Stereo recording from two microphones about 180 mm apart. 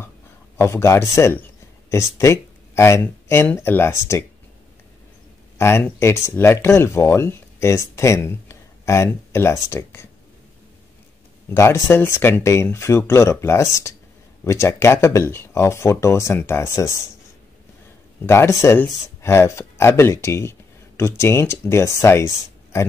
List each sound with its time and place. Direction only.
0.6 s speech: 15° left (ahead or behind)
5.6 s speech: 15° left (ahead or behind)
11.4 s speech: 15° left (ahead or behind)
18.2 s speech: 15° left (ahead or behind)